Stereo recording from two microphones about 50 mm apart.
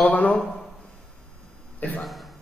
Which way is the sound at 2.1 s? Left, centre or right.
Centre.